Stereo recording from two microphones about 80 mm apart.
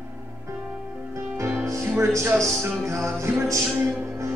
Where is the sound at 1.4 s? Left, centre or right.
Right.